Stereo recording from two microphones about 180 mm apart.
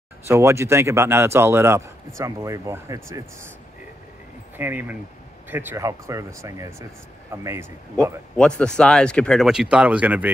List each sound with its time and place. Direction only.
0.3 s speech: 15° right (ahead or behind)
4.6 s speech: 10° right (ahead or behind)
8.4 s speech: 5° left (ahead or behind)